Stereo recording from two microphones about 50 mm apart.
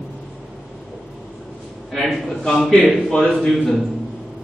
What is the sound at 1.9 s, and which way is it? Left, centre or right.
Speech, centre.